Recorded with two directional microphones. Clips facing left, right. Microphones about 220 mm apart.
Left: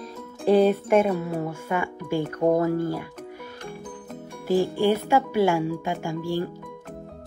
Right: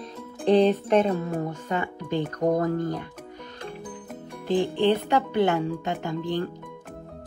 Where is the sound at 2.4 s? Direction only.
25° left (ahead or behind).